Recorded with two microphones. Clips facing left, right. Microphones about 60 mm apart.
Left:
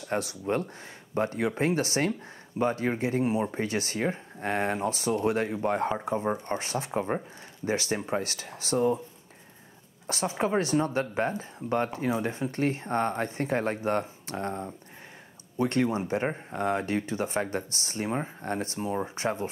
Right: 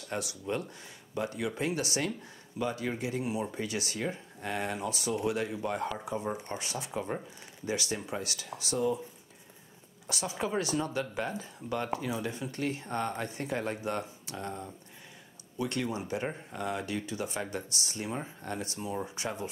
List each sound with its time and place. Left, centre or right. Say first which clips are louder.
0.1 s speech: left 6 dB; left
10.0 s speech: left 6 dB; left